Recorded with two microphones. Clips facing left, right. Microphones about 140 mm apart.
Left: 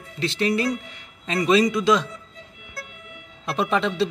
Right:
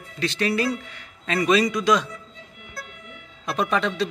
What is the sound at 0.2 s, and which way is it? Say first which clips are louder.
Speech: left 1 dB; 25° left (ahead or behind).